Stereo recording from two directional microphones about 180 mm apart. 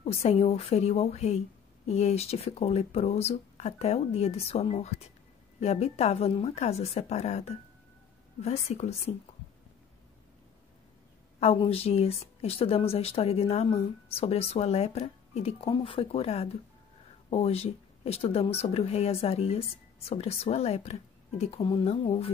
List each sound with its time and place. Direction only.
0.0 s a woman's voice: 35° left (ahead or behind)
11.3 s a woman's voice: 30° left (ahead or behind)